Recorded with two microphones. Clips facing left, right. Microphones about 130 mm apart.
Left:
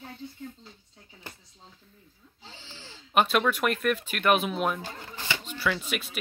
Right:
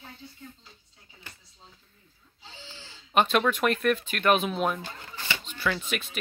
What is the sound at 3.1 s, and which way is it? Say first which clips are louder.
Speech: even; 5° left (ahead or behind).